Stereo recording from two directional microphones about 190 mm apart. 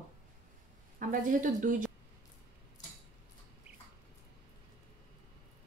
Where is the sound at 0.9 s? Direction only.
45° right (ahead or behind).